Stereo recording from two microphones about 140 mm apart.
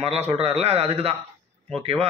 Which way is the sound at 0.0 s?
45° right (ahead or behind).